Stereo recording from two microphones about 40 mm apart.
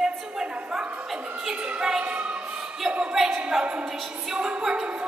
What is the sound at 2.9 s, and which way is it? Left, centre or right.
Speech, right.